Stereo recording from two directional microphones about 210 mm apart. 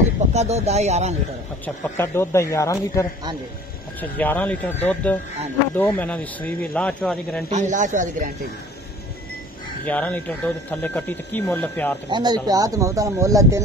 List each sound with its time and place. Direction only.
0.3 s speech: 30° right (ahead or behind)
2.0 s speech: 10° left (ahead or behind)
4.2 s speech: 10° left (ahead or behind)
7.4 s speech: 35° right (ahead or behind)
9.8 s speech: 5° left (ahead or behind)
12.1 s speech: 20° right (ahead or behind)